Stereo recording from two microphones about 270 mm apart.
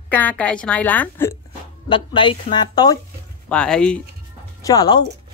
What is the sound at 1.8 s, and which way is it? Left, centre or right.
Speech, centre.